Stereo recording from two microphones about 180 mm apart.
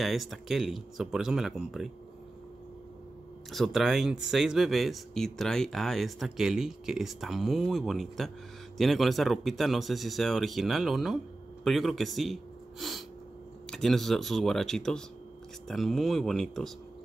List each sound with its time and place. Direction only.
0.0 s speech: centre (ahead or behind)
3.5 s speech: centre (ahead or behind)